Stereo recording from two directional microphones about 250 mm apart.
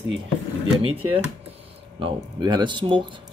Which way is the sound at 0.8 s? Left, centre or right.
Right.